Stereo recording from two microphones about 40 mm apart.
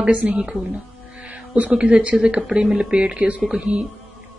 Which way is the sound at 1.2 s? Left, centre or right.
Right.